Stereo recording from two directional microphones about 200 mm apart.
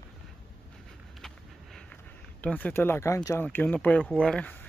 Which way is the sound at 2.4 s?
10° left (ahead or behind).